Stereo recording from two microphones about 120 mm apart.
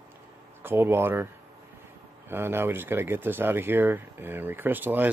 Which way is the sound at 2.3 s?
20° right (ahead or behind).